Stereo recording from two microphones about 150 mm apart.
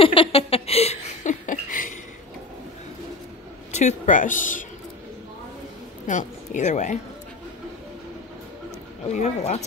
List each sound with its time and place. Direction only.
0.0 s a sound: 40° left (ahead or behind); by 1.9 s 60° left (ahead or behind)
3.7 s speech: 50° left (ahead or behind)
6.0 s a woman's voice: 55° left (ahead or behind)
9.1 s speech: 50° left (ahead or behind)